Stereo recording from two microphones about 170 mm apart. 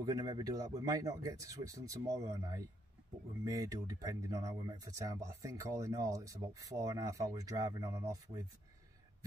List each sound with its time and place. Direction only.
0.0 s speech: 20° right (ahead or behind)